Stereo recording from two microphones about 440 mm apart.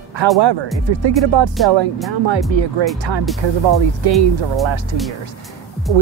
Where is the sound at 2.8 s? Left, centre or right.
Right.